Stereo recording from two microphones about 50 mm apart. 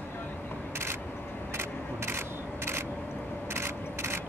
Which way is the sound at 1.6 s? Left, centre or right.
Right.